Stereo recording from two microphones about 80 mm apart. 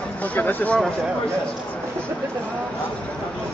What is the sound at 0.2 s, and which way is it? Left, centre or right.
Speech, left.